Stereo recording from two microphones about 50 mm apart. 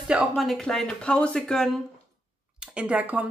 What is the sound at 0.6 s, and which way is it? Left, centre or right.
Speech, centre.